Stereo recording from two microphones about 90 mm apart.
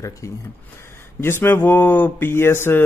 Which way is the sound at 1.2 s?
25° left (ahead or behind).